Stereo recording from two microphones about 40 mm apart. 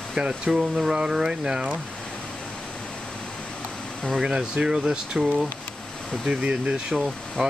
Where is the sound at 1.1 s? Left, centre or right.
Centre.